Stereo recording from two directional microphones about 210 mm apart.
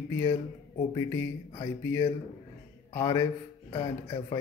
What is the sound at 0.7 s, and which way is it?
A man's voice, 15° left (ahead or behind).